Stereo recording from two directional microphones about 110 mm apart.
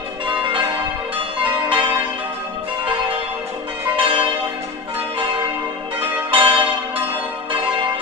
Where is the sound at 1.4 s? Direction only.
50° right (ahead or behind).